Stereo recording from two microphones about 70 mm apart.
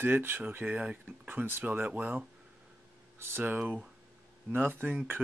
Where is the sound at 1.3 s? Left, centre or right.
Right.